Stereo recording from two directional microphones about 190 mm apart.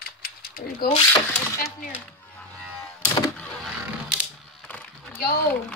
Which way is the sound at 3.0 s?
10° left (ahead or behind).